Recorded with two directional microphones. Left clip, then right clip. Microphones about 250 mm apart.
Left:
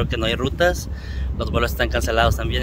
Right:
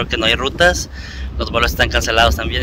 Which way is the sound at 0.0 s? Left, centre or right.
Centre.